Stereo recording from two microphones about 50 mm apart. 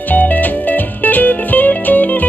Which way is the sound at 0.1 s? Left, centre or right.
Left.